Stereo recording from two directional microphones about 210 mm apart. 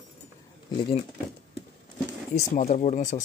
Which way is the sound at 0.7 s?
25° left (ahead or behind).